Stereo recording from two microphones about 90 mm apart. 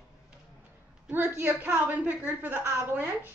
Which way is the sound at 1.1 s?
25° right (ahead or behind).